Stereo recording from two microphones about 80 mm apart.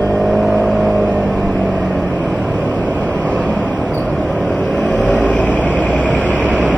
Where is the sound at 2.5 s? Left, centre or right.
Centre.